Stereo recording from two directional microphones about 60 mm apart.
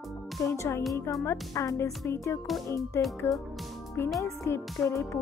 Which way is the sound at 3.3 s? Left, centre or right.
Left.